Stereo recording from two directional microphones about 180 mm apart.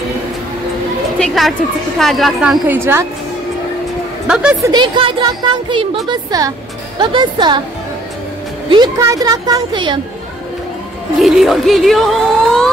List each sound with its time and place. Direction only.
1.2 s a woman's voice: centre (ahead or behind)
2.7 s a woman's voice: 15° right (ahead or behind)
4.3 s speech: 5° right (ahead or behind)
4.6 s speech: 25° right (ahead or behind)
8.6 s speech: 25° right (ahead or behind)
11.1 s speech: centre (ahead or behind)